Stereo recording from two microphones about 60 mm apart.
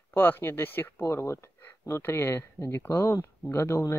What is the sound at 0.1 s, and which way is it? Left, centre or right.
Speech, left.